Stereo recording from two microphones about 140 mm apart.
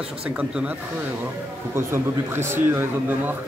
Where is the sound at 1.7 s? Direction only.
15° right (ahead or behind).